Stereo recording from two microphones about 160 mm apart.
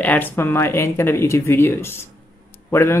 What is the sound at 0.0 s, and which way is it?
Speech, 10° left (ahead or behind).